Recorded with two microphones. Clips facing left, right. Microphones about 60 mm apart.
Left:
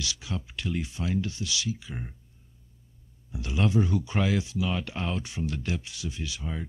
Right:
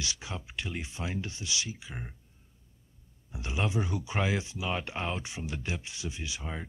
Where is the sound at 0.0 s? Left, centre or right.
Right.